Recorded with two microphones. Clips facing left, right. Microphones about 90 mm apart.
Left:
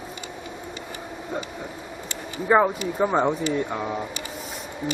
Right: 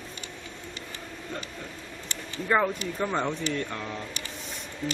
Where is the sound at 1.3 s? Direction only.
15° left (ahead or behind).